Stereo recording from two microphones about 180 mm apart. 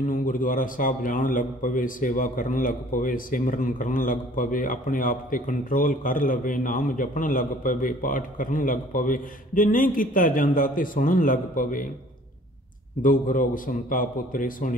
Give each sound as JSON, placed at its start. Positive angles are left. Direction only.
{"t": 0.1, "sound": "a man's voice", "side_deg": 50}
{"t": 13.0, "sound": "a man's voice", "side_deg": 45}